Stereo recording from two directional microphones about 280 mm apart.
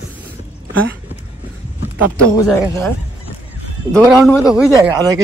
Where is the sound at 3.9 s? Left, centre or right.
Centre.